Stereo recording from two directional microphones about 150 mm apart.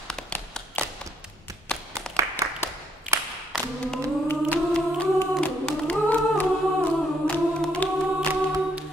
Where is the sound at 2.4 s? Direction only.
20° right (ahead or behind).